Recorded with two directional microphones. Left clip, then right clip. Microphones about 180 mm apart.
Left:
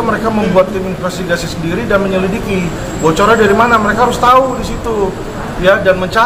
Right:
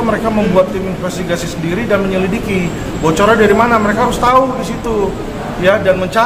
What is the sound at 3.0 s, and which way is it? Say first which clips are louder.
A man's voice: left 1 dB; 15° right (ahead or behind).